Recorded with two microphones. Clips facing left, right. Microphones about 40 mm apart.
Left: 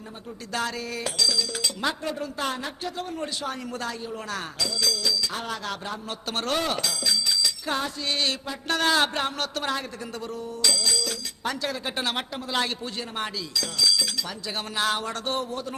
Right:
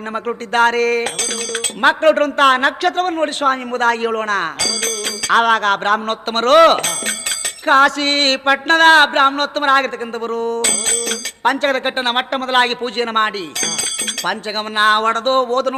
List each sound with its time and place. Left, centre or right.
0.5 s a man's voice: right
10.3 s a sound: right
11.4 s a man's voice: right